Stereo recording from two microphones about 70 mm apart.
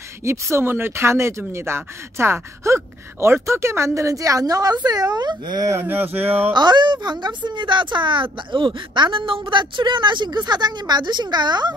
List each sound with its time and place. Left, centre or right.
0.2 s a woman's voice: right
5.8 s a sound: right
6.5 s a woman's voice: right